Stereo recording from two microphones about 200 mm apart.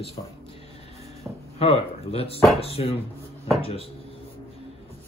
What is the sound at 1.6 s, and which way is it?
A man's voice, 30° left (ahead or behind).